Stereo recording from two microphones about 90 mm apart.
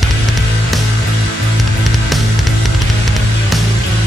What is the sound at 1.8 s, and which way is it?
Music, centre (ahead or behind).